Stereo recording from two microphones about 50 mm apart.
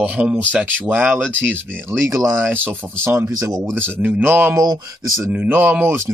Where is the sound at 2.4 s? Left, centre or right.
Right.